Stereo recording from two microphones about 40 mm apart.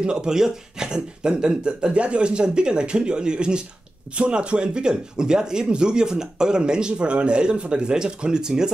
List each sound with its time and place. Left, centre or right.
0.0 s speech: right